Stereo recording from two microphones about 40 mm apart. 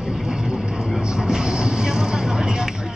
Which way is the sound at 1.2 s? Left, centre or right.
Centre.